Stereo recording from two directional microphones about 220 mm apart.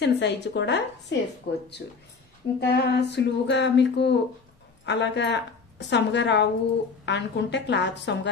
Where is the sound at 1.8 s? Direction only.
40° left (ahead or behind).